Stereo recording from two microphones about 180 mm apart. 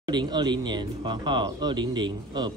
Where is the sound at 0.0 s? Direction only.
25° right (ahead or behind).